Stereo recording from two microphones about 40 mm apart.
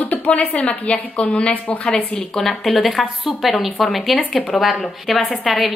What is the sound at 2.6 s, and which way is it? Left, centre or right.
A woman's voice, centre.